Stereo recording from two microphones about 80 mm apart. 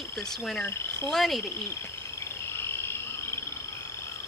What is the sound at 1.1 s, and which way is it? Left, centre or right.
Speech, centre.